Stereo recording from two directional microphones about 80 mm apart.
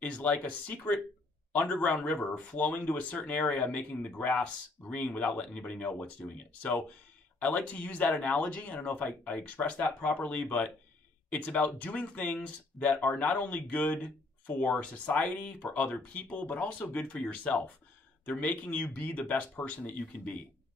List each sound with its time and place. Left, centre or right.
0.0 s speech: centre